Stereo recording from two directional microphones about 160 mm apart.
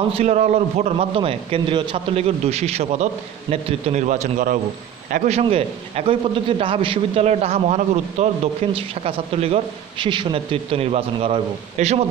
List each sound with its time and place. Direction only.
0.1 s a man's voice: 40° right (ahead or behind)
5.4 s a man's voice: 40° right (ahead or behind)